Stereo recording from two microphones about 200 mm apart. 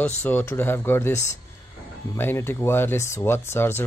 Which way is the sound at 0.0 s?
10° left (ahead or behind).